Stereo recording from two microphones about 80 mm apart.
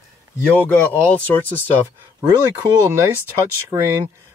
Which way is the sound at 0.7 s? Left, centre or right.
Left.